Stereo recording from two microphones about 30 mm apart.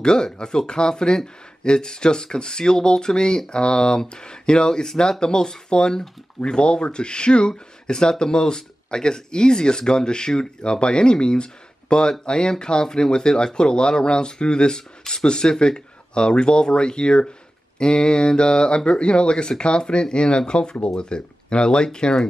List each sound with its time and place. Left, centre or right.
0.0 s speech: left